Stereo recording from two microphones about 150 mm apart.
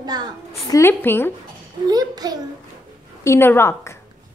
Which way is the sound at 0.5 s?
20° left (ahead or behind).